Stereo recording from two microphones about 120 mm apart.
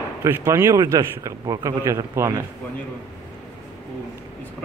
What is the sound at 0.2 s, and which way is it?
A man's voice, 20° right (ahead or behind).